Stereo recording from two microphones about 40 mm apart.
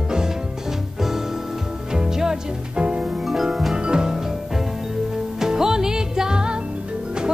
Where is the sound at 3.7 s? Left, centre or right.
Right.